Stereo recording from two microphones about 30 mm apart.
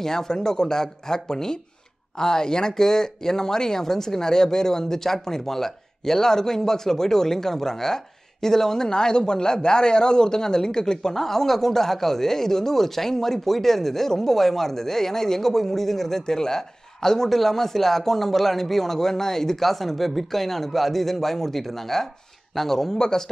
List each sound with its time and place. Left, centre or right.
0.0 s speech: centre